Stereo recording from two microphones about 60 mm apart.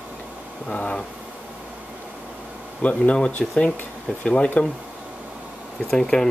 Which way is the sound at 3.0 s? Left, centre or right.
Centre.